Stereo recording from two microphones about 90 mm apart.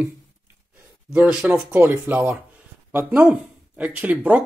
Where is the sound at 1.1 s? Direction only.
15° right (ahead or behind).